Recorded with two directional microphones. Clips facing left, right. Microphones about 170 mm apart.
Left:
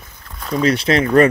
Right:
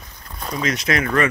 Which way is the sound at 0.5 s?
30° left (ahead or behind).